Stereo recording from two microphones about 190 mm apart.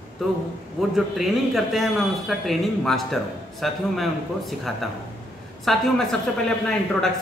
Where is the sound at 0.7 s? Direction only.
Centre (ahead or behind).